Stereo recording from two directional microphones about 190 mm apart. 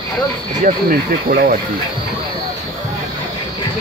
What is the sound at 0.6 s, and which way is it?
Speech, 50° right (ahead or behind).